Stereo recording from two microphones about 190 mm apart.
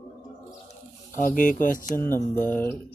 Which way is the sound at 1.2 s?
45° left (ahead or behind).